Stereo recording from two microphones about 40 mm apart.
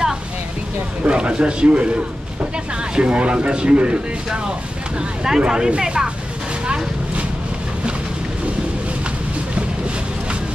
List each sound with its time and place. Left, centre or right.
1.0 s a man's voice: right
3.0 s speech: right
4.3 s speech: centre
6.6 s vehicle: right